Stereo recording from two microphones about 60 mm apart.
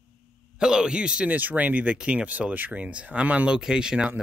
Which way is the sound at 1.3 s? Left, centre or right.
Right.